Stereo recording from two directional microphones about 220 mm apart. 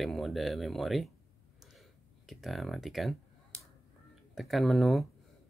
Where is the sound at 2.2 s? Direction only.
Centre (ahead or behind).